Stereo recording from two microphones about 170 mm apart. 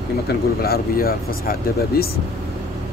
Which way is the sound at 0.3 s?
65° left (ahead or behind).